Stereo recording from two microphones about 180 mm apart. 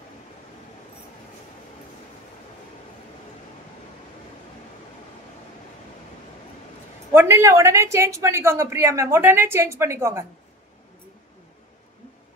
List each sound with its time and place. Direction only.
7.1 s a woman's voice: 15° right (ahead or behind)